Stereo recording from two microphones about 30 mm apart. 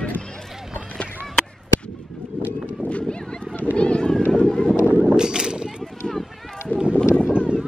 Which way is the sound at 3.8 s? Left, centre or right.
Left.